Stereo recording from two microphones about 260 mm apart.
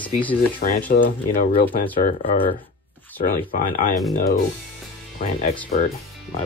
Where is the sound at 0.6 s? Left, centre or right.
Left.